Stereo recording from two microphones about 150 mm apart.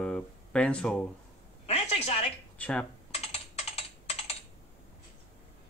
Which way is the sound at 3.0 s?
45° left (ahead or behind).